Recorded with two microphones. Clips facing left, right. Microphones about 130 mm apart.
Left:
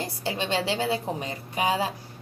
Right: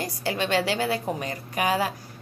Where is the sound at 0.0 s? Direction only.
25° left (ahead or behind).